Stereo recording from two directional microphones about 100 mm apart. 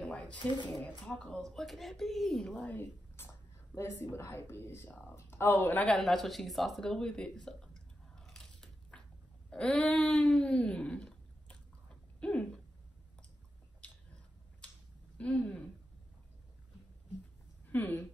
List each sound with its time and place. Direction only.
0.0 s a sound: 10° left (ahead or behind)
0.7 s speech: 15° left (ahead or behind)
2.5 s a woman's voice: 15° left (ahead or behind)
5.9 s a sound: 5° left (ahead or behind)
9.5 s speech: 10° left (ahead or behind)
13.7 s finger snapping: 10° left (ahead or behind)
15.1 s speech: 10° left (ahead or behind)
17.6 s speech: 20° left (ahead or behind)